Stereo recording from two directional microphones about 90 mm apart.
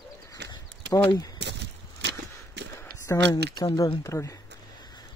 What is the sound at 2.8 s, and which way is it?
Speech, 40° left (ahead or behind).